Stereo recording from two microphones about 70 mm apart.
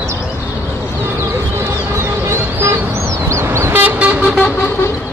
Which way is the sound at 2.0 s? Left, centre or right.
Right.